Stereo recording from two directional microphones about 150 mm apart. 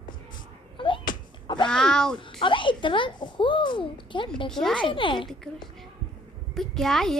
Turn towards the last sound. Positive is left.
turn(degrees=0)  # may be behind; listen again after turning